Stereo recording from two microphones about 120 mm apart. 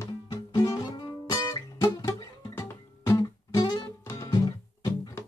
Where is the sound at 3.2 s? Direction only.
35° left (ahead or behind).